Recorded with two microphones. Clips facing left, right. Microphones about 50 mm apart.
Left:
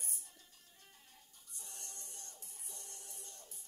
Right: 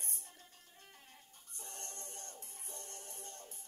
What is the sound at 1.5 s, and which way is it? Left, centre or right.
Music, right.